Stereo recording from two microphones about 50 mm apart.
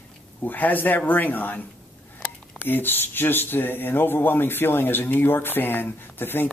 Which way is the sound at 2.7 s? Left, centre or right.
Left.